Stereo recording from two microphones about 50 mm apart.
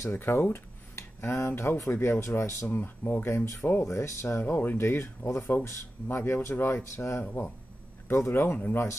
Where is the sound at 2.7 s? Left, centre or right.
Left.